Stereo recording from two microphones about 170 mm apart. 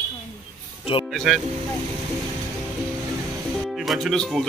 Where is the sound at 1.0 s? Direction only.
Centre (ahead or behind).